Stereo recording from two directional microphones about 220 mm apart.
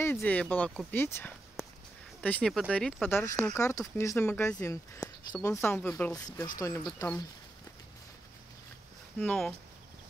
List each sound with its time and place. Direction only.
0.0 s speech: 10° left (ahead or behind)
6.1 s speech: 15° left (ahead or behind)
9.2 s speech: 5° left (ahead or behind)